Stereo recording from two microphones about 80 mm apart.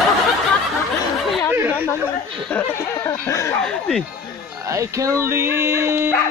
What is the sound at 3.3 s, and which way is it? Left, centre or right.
Speech, left.